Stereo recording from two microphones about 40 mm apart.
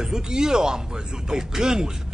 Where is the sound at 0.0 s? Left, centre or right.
Centre.